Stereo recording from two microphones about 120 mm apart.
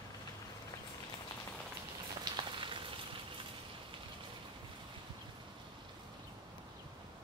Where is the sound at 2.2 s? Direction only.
40° right (ahead or behind).